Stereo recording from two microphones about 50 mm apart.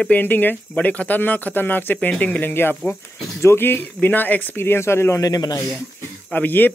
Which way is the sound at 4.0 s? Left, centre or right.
Left.